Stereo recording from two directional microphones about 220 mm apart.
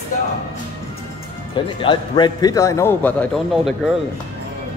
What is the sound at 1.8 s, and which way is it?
A man's voice, 20° left (ahead or behind).